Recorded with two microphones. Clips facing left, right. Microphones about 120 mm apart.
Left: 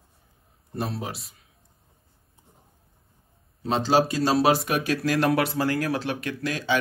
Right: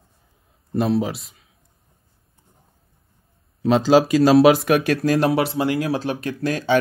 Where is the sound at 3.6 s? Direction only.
90° right; by 5.1 s 60° right (ahead or behind).